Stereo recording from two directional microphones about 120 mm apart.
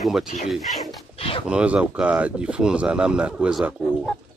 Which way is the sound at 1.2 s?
50° left (ahead or behind).